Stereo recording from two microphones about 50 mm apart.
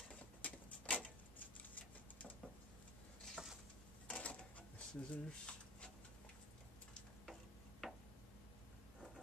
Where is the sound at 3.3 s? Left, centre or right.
Centre.